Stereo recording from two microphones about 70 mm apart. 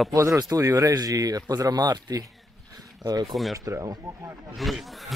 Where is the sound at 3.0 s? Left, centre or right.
Right.